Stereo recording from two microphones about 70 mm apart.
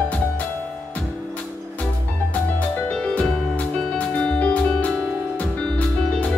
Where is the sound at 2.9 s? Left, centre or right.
Centre.